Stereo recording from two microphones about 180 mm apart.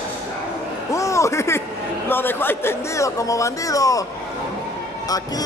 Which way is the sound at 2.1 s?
10° left (ahead or behind).